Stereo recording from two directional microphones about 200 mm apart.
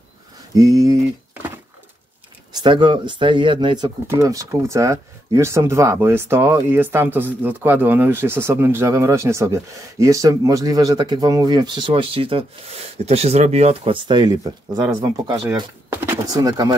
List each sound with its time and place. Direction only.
0.6 s speech: 15° right (ahead or behind)
2.5 s speech: 25° right (ahead or behind)